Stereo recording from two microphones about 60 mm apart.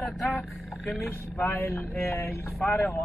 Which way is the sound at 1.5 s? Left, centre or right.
Left.